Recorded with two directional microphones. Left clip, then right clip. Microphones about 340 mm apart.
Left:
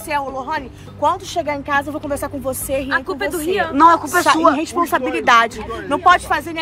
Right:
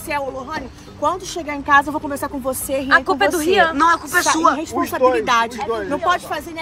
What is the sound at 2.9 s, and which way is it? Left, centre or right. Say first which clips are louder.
Speech: right 10 dB; right.